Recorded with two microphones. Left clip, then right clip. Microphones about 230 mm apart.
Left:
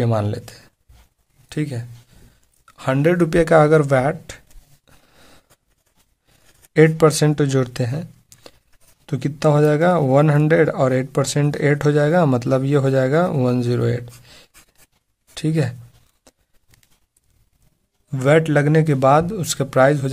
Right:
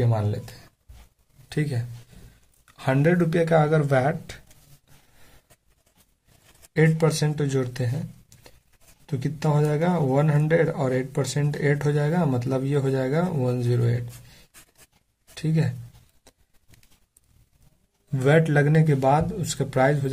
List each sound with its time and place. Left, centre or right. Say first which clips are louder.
0.0 s speech: left 6 dB; left
1.5 s a man's voice: left 3 dB; left
7.0 s speech: left 9 dB; left
16.3 s horse: left 4 dB; left
18.1 s a man's voice: left 5 dB; left